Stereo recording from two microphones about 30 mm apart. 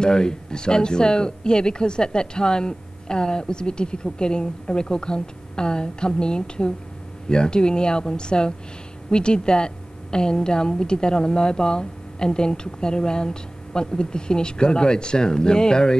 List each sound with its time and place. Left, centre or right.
0.0 s speech: left